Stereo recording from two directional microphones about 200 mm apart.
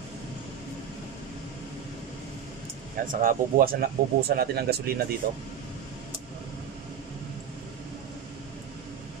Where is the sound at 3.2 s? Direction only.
45° right (ahead or behind).